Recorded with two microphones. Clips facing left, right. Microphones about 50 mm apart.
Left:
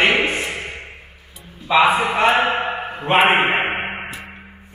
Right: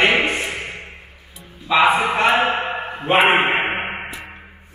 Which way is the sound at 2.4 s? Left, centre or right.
Left.